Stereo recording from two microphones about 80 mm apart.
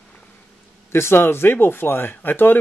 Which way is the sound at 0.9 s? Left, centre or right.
Left.